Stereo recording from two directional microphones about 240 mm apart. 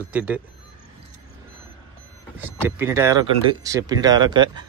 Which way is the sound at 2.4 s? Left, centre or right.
Centre.